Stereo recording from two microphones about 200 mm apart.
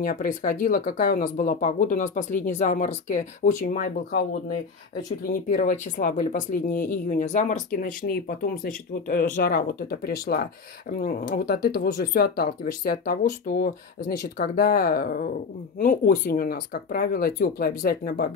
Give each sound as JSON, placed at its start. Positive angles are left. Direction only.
{"t": 0.0, "sound": "speech", "side_deg": 40}